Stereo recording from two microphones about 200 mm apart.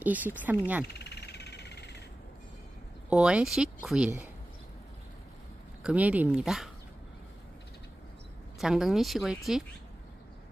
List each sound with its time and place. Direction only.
0.0 s speech: 10° right (ahead or behind)
0.8 s vehicle: 55° left (ahead or behind)
3.1 s speech: 5° right (ahead or behind)
5.9 s speech: 5° right (ahead or behind)
8.5 s speech: centre (ahead or behind)